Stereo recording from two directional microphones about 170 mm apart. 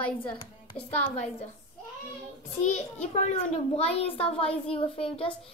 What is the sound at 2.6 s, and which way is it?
A child's voice, 40° left (ahead or behind).